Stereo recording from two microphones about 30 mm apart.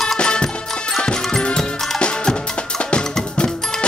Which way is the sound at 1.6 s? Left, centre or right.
Left.